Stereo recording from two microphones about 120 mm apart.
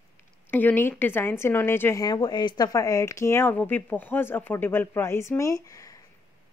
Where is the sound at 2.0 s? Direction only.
35° left (ahead or behind).